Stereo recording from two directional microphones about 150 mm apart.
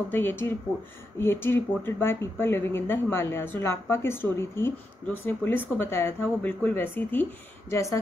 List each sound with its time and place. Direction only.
0.1 s a woman's voice: 15° left (ahead or behind)